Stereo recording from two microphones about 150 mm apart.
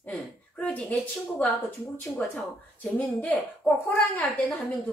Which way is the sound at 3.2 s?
10° left (ahead or behind).